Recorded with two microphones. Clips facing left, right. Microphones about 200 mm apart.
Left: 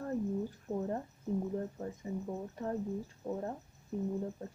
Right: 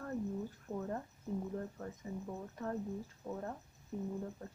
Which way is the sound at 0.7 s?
25° left (ahead or behind).